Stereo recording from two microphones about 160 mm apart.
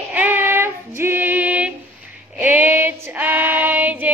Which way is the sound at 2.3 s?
10° right (ahead or behind).